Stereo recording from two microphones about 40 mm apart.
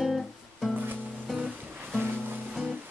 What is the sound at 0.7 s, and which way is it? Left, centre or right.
Music, right.